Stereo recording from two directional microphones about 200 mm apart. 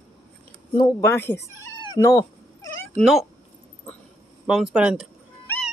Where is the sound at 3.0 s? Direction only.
Centre (ahead or behind).